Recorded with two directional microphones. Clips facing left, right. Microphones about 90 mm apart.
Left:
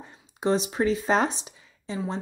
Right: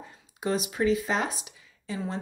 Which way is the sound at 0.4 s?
30° left (ahead or behind).